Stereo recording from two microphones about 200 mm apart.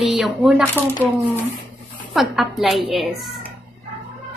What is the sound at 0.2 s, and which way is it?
Speech, 5° right (ahead or behind).